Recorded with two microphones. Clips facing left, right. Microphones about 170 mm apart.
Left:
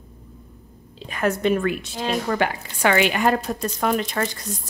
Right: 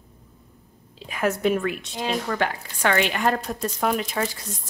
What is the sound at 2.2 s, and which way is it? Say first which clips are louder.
A woman's voice: left 3 dB; 10° left (ahead or behind).